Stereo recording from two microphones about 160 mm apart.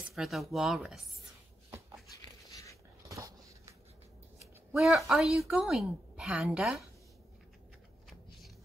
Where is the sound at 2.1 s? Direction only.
20° left (ahead or behind).